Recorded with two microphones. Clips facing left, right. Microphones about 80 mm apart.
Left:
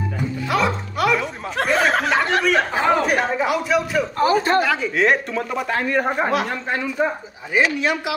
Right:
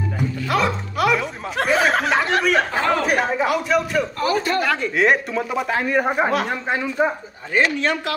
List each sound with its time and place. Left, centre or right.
0.5 s speech: centre
4.2 s speech: left
4.6 s speech: centre
7.5 s a man's voice: centre